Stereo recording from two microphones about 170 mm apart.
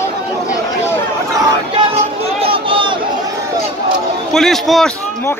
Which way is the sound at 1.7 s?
30° right (ahead or behind).